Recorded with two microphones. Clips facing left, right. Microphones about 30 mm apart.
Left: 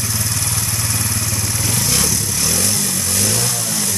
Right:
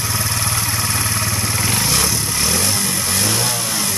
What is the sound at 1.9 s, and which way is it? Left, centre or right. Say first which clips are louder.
Motorcycle: right 1 dB; centre.